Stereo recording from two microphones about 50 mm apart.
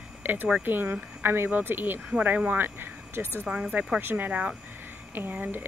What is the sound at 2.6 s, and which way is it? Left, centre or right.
Speech, right.